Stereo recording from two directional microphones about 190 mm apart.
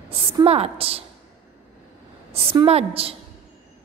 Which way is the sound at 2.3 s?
30° right (ahead or behind).